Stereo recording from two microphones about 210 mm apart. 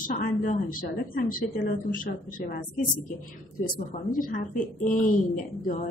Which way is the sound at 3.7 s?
40° left (ahead or behind).